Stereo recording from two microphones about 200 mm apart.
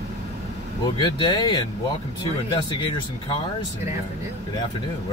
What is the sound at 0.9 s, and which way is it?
Speech, 20° left (ahead or behind).